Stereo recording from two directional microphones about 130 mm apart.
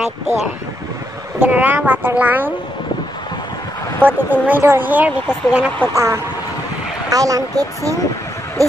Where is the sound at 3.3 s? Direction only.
25° left (ahead or behind).